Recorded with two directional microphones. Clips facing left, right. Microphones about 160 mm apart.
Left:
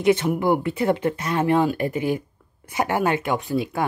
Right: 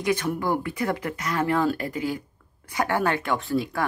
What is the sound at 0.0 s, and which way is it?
Speech, 25° left (ahead or behind).